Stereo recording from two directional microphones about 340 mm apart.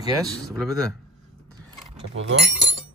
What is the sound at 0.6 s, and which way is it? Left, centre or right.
Speech, centre.